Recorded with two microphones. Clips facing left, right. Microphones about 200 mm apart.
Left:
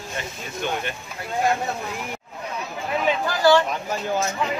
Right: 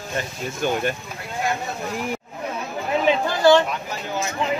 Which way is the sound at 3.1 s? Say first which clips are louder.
Right 2 dB; 25° right (ahead or behind).